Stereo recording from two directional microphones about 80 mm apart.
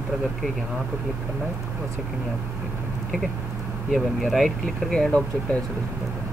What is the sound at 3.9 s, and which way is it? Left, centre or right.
Speech, centre.